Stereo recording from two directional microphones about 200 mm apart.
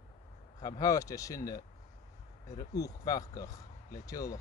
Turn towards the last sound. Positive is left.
turn(degrees=15)  # may be behind; listen again after turning